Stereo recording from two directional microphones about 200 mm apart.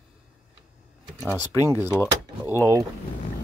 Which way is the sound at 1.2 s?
15° left (ahead or behind).